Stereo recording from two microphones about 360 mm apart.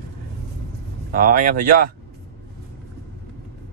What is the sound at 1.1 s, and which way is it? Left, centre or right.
Speech, right.